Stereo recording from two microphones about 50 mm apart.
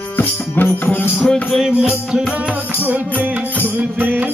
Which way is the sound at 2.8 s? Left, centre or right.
Right.